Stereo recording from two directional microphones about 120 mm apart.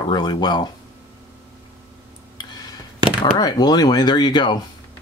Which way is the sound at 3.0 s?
35° left (ahead or behind).